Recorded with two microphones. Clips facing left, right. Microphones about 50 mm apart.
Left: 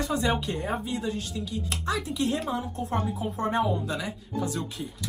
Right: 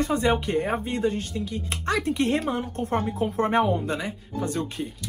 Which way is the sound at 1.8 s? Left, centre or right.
Right.